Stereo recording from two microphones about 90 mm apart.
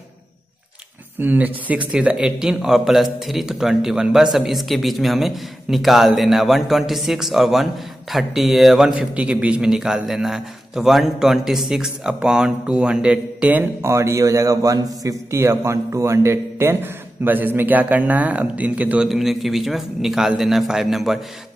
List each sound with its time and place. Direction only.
1.2 s speech: 20° right (ahead or behind)
13.8 s a man's voice: 30° right (ahead or behind); by 19.0 s 15° right (ahead or behind)
19.0 s speech: centre (ahead or behind)